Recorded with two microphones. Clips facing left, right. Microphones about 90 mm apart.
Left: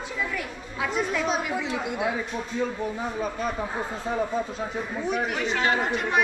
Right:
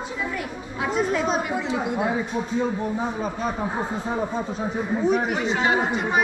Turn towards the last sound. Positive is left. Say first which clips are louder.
# right 3 dB
turn(degrees=-5)  # may be behind; listen again after turning